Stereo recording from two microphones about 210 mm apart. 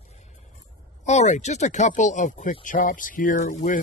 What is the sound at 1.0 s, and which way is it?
Speech, 35° left (ahead or behind).